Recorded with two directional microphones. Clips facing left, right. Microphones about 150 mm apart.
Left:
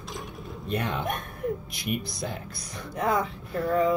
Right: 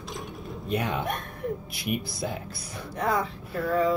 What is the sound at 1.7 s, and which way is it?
A woman's voice, 5° right (ahead or behind).